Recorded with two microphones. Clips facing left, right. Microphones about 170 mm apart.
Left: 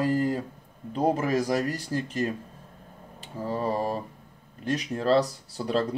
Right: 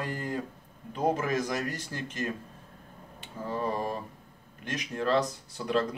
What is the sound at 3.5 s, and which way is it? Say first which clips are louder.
Speech: left 4 dB; 30° left (ahead or behind).